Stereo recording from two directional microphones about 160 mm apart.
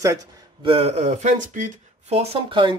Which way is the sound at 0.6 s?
35° right (ahead or behind).